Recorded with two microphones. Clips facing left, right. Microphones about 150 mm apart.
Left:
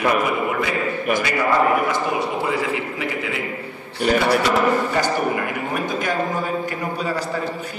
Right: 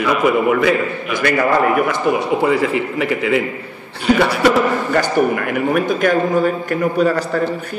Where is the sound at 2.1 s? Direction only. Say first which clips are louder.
Right 7 dB; 60° right (ahead or behind).